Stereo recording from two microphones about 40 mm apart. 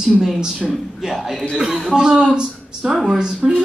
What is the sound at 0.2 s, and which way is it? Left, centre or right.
Speech, centre.